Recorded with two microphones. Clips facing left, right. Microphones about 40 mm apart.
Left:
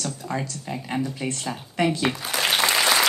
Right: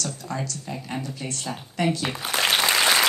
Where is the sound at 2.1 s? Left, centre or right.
Right.